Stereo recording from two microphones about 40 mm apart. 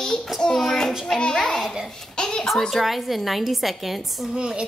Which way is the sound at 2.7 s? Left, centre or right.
Centre.